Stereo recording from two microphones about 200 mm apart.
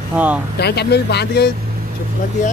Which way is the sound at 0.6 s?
55° left (ahead or behind).